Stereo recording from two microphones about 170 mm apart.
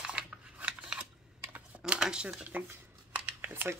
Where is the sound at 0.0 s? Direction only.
5° right (ahead or behind).